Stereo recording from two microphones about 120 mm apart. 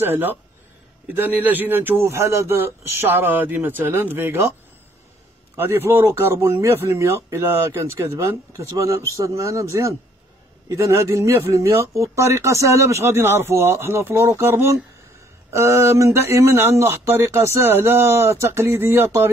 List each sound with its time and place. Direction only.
0.0 s speech: 15° right (ahead or behind)
5.6 s speech: 20° right (ahead or behind)